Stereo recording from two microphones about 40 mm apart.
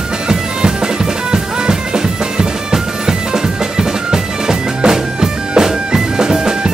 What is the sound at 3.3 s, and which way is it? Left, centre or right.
Music, centre.